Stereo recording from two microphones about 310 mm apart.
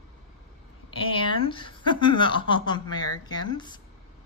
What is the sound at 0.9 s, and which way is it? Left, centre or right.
A woman's voice, centre.